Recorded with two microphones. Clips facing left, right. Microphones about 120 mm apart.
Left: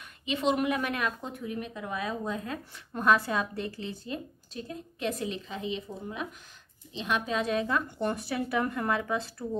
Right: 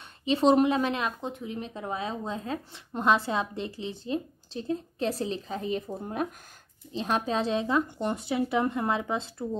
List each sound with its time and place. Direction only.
0.2 s speech: 35° right (ahead or behind)